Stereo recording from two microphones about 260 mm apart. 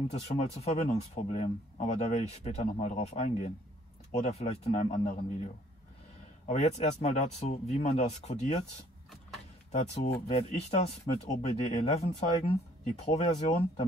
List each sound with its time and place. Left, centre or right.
0.1 s speech: left
9.7 s speech: left